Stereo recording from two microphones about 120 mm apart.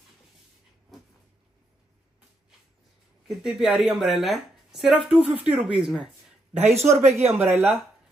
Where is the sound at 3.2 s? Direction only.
5° right (ahead or behind).